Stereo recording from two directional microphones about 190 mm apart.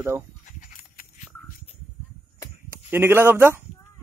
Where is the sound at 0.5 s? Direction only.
45° left (ahead or behind).